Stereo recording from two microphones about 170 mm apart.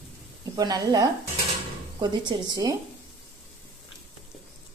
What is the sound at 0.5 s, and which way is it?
Speech, 25° right (ahead or behind).